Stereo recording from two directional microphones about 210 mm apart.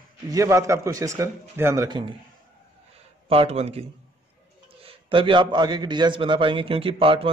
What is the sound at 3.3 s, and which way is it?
A man's voice, 30° right (ahead or behind).